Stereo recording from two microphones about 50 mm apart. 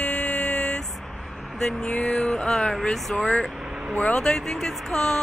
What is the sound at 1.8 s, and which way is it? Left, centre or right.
Speech, centre.